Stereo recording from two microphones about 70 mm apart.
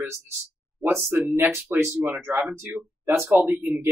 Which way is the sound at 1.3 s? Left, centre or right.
Right.